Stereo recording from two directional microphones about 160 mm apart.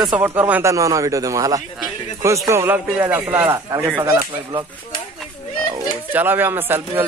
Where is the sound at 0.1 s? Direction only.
10° right (ahead or behind).